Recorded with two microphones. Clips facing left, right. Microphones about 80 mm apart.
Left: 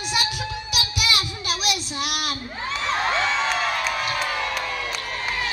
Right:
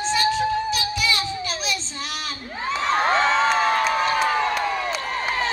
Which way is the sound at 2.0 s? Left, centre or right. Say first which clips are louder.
Left 4 dB; left.